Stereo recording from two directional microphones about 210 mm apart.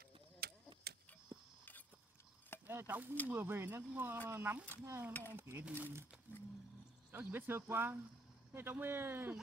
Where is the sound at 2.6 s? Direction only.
10° right (ahead or behind).